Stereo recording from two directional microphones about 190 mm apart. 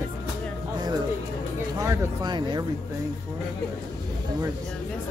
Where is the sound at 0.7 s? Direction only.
20° right (ahead or behind).